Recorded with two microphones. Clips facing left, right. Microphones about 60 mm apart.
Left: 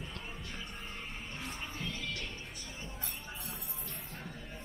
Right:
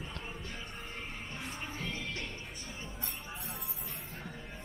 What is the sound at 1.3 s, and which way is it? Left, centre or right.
Music, centre.